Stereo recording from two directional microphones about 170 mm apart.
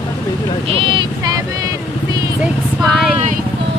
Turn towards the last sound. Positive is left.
turn(degrees=0)  # may be behind; listen again after turning